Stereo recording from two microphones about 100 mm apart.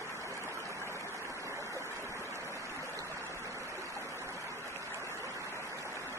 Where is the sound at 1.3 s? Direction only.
30° right (ahead or behind).